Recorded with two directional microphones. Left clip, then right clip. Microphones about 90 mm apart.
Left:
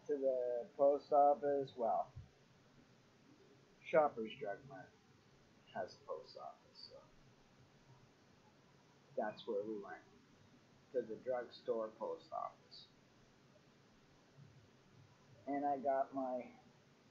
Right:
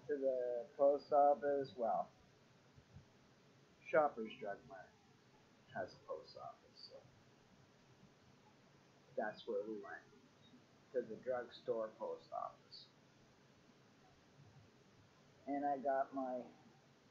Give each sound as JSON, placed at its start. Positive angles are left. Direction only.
{"t": 0.2, "sound": "speech", "side_deg": -5}
{"t": 3.9, "sound": "speech", "side_deg": 0}
{"t": 5.7, "sound": "speech", "side_deg": -20}
{"t": 6.8, "sound": "a sound", "side_deg": 0}
{"t": 9.1, "sound": "speech", "side_deg": 0}
{"t": 11.0, "sound": "speech", "side_deg": 0}
{"t": 15.4, "sound": "speech", "side_deg": 0}